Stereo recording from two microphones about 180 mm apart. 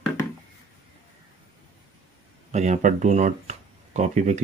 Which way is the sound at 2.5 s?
40° right (ahead or behind).